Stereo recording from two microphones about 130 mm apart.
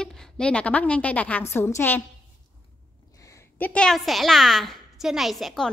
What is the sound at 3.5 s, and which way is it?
A woman's voice, 10° left (ahead or behind).